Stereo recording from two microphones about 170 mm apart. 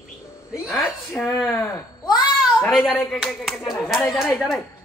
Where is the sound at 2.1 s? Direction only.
Centre (ahead or behind).